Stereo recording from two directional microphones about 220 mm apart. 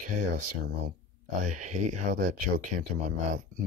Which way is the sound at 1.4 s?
35° right (ahead or behind).